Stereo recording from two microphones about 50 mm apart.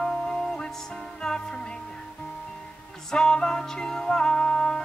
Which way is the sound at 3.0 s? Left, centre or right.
Centre.